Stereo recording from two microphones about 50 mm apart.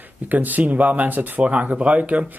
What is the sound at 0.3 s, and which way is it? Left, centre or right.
Speech, right.